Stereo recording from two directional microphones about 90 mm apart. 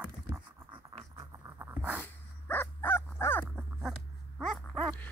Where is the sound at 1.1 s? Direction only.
40° right (ahead or behind).